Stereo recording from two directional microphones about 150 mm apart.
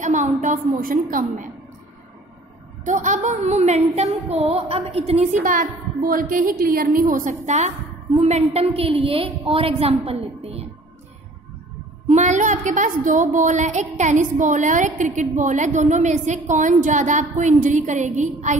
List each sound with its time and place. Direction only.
0.0 s a woman's voice: 55° right (ahead or behind)
2.8 s a woman's voice: 55° right (ahead or behind); by 10.7 s 40° right (ahead or behind)
12.1 s a woman's voice: 55° right (ahead or behind)